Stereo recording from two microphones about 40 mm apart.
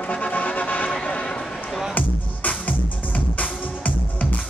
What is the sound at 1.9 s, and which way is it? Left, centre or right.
Music, left.